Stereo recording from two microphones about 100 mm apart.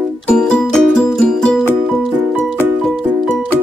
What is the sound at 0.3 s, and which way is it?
Music, 10° left (ahead or behind).